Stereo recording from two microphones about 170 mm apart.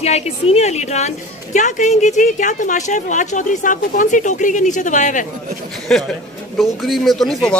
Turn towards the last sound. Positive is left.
turn(degrees=5)  # may be behind; listen again after turning